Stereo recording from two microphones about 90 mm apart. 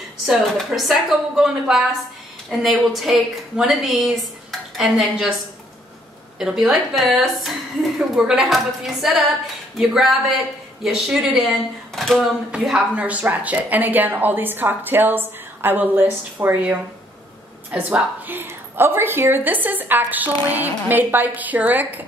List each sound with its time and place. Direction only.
0.3 s a woman's voice: centre (ahead or behind)
6.4 s a woman's voice: 5° right (ahead or behind)
12.4 s speech: 10° right (ahead or behind)